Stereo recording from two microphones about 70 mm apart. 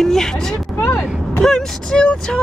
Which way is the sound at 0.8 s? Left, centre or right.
Left.